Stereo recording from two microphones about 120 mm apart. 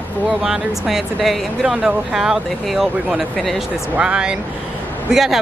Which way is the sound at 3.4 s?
Centre (ahead or behind).